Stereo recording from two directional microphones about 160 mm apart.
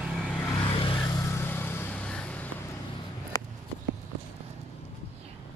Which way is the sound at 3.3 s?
25° left (ahead or behind).